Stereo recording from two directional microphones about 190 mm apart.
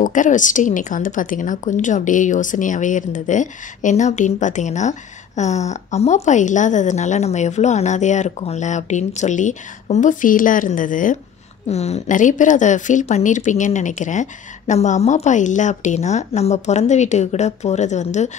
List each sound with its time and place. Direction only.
0.0 s a woman's voice: 40° left (ahead or behind)